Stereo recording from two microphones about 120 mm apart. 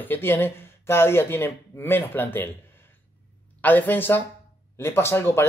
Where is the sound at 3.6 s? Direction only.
15° left (ahead or behind).